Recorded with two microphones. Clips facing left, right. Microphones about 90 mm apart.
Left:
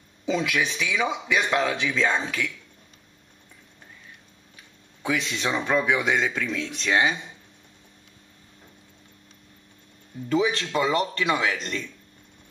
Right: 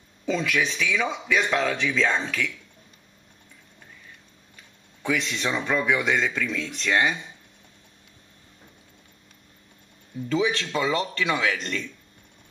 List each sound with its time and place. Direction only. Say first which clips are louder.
0.2 s speech: even; 10° left (ahead or behind)
5.0 s speech: even; 15° left (ahead or behind)
10.2 s speech: left 1 dB; 20° left (ahead or behind)